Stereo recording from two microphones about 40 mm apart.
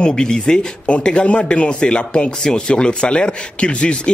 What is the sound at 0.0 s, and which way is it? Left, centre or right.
Speech, centre.